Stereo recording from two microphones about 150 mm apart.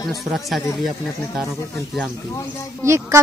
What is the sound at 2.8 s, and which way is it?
Speech, 20° right (ahead or behind).